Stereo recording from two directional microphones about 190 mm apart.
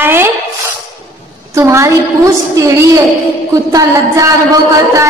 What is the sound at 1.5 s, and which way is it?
A woman's voice, 15° right (ahead or behind).